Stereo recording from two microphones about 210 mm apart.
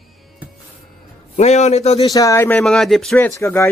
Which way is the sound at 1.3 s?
30° left (ahead or behind).